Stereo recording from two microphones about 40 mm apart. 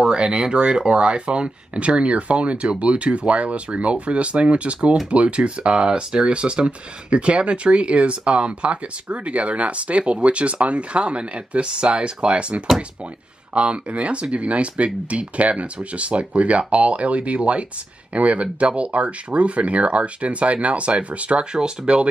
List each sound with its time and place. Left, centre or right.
0.0 s speech: centre